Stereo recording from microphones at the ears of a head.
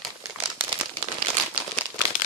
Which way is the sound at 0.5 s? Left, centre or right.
Right.